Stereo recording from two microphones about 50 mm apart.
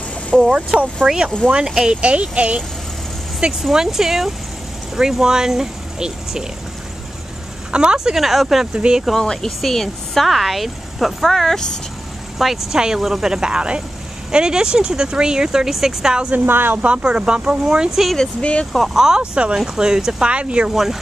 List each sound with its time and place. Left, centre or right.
0.6 s speech: right
1.0 s a child's voice: centre
3.7 s speech: centre
7.7 s speech: centre
8.7 s a child's voice: centre
9.2 s speech: centre
12.4 s speech: centre
16.4 s speech: right
16.8 s speech: right
18.4 s speech: left
18.9 s speech: centre
20.7 s speech: centre